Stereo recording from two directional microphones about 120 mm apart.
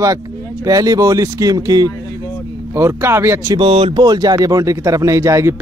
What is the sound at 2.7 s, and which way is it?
Speech, 20° right (ahead or behind).